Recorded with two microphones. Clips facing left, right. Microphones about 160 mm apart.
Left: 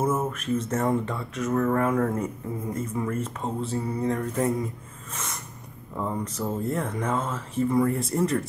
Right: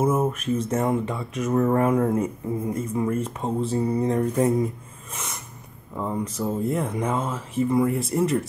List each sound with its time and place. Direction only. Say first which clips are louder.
0.0 s speech: right 4 dB; 15° right (ahead or behind)
5.1 s a sound: right 1 dB; 5° right (ahead or behind)
5.9 s speech: right 2 dB; 10° right (ahead or behind)